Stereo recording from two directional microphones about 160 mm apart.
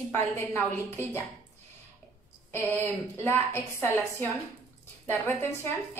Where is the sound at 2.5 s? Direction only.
15° left (ahead or behind).